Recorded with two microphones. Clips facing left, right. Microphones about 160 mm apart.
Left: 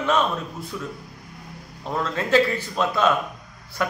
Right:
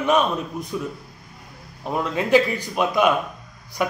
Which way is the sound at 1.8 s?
15° right (ahead or behind).